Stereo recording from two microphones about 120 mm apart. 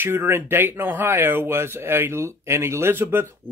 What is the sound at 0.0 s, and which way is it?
Speech, 20° right (ahead or behind).